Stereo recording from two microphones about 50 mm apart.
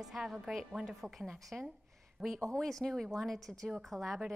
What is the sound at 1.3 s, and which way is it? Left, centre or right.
Speech, centre.